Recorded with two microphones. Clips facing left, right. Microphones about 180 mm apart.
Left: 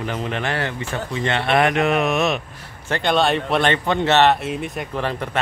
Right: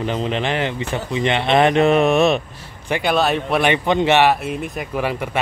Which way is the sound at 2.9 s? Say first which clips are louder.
Right 1 dB; 10° right (ahead or behind).